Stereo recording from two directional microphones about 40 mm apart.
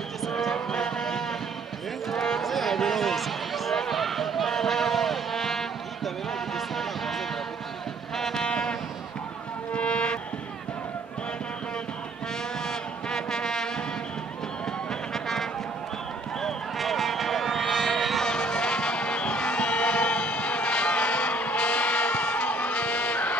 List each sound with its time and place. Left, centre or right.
0.3 s a sound: centre
6.5 s music: centre
8.4 s music: left
12.6 s foghorn: centre
14.9 s music: centre
16.7 s run: centre
18.2 s music: centre; by 23.3 s left